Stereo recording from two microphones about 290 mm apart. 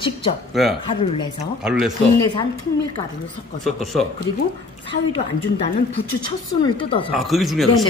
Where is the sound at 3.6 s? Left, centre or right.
Centre.